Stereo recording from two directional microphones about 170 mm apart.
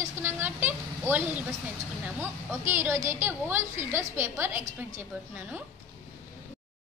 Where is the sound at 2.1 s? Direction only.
15° right (ahead or behind).